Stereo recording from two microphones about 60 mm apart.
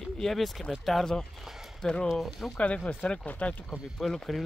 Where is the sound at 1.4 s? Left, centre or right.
Centre.